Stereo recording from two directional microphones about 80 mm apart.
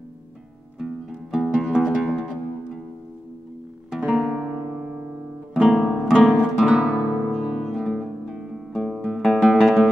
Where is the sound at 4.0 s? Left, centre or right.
Centre.